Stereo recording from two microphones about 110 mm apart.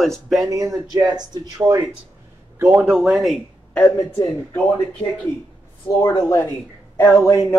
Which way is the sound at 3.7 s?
15° left (ahead or behind).